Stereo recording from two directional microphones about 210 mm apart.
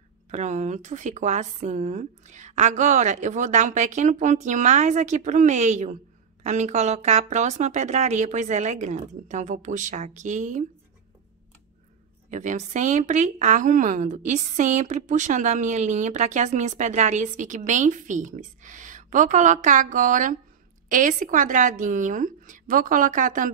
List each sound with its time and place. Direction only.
0.3 s a woman's voice: 35° right (ahead or behind)
12.3 s a woman's voice: 35° right (ahead or behind)